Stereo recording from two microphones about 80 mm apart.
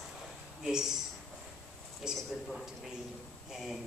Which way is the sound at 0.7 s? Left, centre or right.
Centre.